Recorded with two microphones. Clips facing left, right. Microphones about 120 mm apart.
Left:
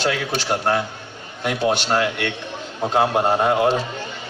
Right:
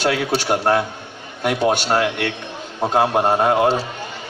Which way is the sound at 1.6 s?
50° right (ahead or behind).